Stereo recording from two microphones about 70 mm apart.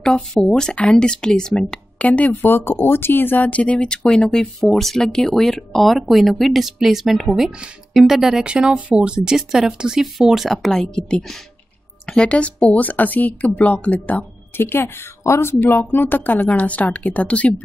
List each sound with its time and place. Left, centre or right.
0.0 s a woman's voice: centre
14.6 s a woman's voice: left; by 17.6 s centre